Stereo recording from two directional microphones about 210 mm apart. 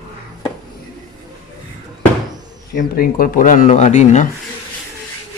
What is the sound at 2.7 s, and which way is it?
Speech, 45° left (ahead or behind).